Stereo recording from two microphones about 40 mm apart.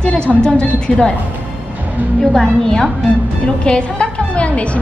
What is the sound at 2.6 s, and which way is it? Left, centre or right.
Speech, centre.